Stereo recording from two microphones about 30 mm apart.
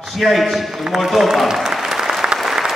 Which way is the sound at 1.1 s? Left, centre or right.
Centre.